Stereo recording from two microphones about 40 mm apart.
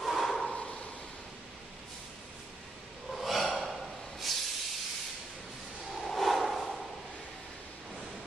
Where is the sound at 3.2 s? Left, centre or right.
Centre.